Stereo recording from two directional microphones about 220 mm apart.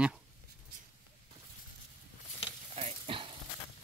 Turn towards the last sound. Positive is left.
turn(degrees=-25)  # may be behind; listen again after turning